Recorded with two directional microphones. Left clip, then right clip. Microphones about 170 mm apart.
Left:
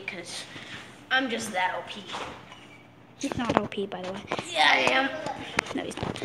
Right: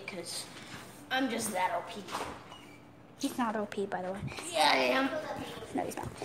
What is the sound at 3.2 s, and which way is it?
Speech, 5° right (ahead or behind).